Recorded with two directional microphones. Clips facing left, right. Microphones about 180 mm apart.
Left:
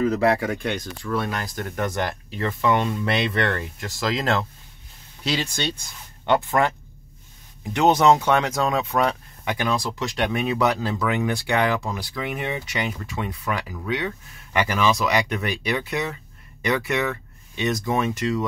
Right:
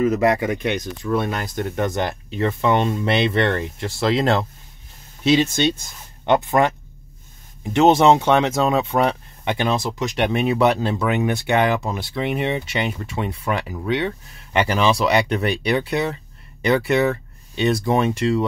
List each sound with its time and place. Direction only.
0.0 s speech: 15° right (ahead or behind)
7.7 s speech: 25° right (ahead or behind)